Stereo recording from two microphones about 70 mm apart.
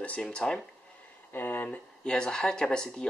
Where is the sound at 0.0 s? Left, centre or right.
Centre.